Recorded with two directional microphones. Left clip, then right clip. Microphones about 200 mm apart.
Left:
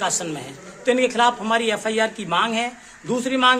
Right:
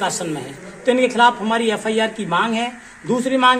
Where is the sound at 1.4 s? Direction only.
5° left (ahead or behind).